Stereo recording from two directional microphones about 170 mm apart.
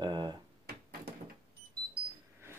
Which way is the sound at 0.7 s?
65° right (ahead or behind).